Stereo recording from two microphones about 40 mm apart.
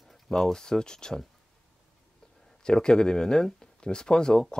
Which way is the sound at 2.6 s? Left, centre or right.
Centre.